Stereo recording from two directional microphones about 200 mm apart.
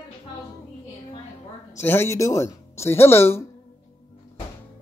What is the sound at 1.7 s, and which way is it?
Speech, 10° left (ahead or behind).